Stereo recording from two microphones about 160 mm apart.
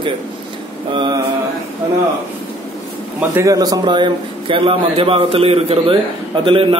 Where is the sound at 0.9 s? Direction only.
30° right (ahead or behind).